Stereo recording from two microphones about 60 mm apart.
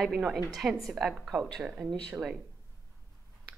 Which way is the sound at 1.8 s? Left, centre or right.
Right.